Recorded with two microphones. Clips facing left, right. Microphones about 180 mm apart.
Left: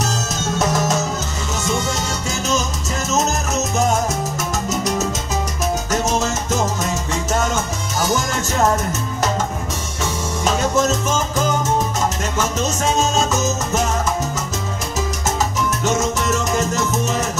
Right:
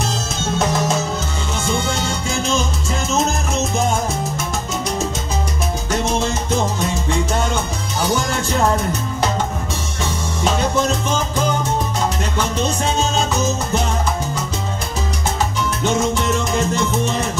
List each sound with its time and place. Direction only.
0.0 s music: 40° left (ahead or behind)
3.1 s salsa music: 40° left (ahead or behind)
5.9 s music: 40° left (ahead or behind)
16.0 s salsa music: 40° left (ahead or behind)